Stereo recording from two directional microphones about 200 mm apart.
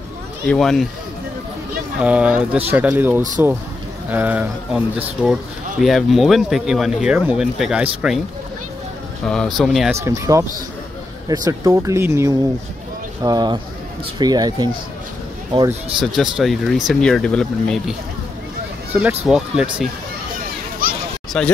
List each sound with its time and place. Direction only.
0.5 s speech: centre (ahead or behind)
2.0 s speech: 5° right (ahead or behind)
9.2 s speech: 5° left (ahead or behind)
10.0 s speech: 15° right (ahead or behind)
16.0 s speech: centre (ahead or behind)
18.9 s speech: 5° right (ahead or behind)
20.8 s a sound: 45° right (ahead or behind)
21.4 s speech: 5° left (ahead or behind)